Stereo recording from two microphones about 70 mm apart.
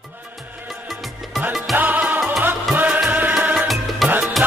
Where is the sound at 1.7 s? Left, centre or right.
Right.